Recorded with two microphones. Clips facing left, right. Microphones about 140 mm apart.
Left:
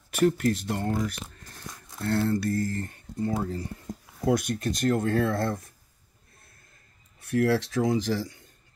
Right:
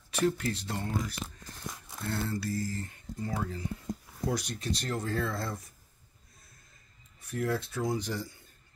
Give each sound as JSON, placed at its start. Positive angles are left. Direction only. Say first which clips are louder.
{"t": 0.2, "sound": "speech", "louder": "left 6 dB", "side_deg": 55}
{"t": 3.2, "sound": "speech", "louder": "left 7 dB", "side_deg": 35}
{"t": 4.3, "sound": "speech", "louder": "left 8 dB", "side_deg": 55}
{"t": 7.2, "sound": "speech", "louder": "left 8 dB", "side_deg": 75}